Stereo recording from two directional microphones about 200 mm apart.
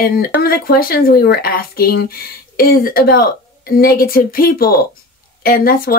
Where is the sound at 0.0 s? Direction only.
50° left (ahead or behind).